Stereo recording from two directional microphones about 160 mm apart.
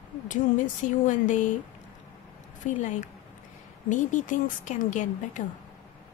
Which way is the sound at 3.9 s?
50° left (ahead or behind).